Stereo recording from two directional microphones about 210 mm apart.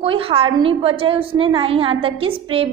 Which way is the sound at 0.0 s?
25° right (ahead or behind).